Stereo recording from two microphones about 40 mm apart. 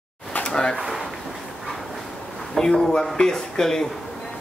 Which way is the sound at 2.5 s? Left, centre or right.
Centre.